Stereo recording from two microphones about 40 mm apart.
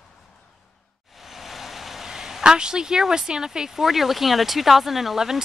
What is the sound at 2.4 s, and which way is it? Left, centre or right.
Speech, centre.